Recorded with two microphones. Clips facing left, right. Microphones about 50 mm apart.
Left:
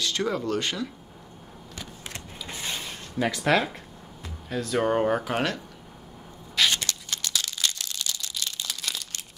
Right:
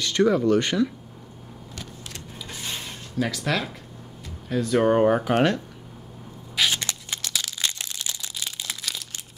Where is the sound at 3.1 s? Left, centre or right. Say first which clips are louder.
Left 3 dB; centre.